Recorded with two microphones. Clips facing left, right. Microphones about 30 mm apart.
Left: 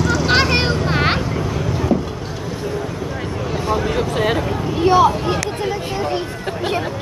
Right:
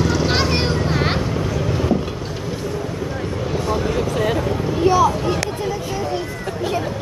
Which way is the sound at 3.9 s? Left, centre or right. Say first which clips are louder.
Left 1 dB; left.